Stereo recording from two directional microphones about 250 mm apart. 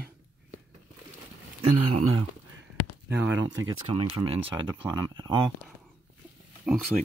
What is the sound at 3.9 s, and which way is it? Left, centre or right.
Speech, right.